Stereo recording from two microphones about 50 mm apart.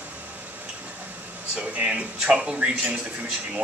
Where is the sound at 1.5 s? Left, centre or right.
Right.